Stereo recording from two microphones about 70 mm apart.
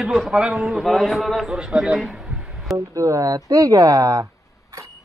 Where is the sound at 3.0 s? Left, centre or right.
Right.